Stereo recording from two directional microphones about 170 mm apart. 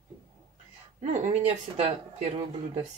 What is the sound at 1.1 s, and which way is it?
Speech, 40° right (ahead or behind).